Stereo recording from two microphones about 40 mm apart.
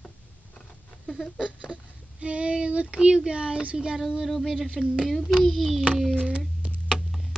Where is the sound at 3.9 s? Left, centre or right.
Centre.